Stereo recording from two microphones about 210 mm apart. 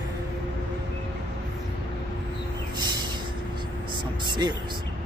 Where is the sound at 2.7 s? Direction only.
20° right (ahead or behind).